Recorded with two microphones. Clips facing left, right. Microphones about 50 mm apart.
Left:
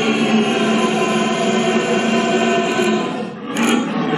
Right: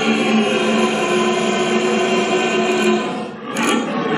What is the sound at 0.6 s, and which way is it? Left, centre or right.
Music, left.